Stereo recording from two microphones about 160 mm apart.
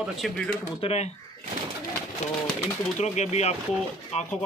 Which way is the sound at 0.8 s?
40° left (ahead or behind).